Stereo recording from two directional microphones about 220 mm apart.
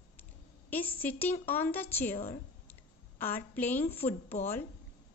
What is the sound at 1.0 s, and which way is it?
Speech, 10° left (ahead or behind).